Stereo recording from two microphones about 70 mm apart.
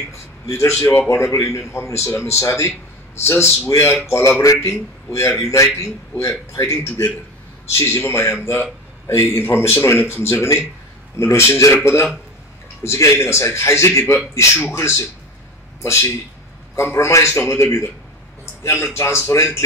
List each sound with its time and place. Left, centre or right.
0.5 s a man's voice: left
18.4 s a sound: left
19.2 s speech: left